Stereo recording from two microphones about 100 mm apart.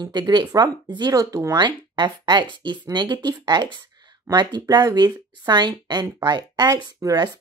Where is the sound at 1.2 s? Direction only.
30° right (ahead or behind).